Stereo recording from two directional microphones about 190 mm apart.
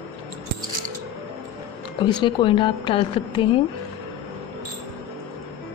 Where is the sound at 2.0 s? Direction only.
25° left (ahead or behind).